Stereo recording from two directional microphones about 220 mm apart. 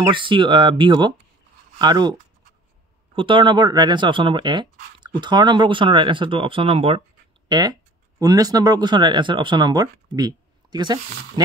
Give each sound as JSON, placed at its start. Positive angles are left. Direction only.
{"t": 0.0, "sound": "speech", "side_deg": -20}
{"t": 3.2, "sound": "speech", "side_deg": -20}